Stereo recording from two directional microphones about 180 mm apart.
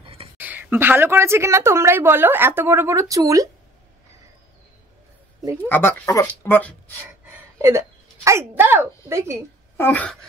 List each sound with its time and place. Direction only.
0.0 s a sound: 30° right (ahead or behind)
0.4 s a woman's voice: 10° right (ahead or behind)
5.6 s speech: 10° left (ahead or behind)
7.0 s a woman's voice: 15° right (ahead or behind)
9.8 s speech: 10° left (ahead or behind)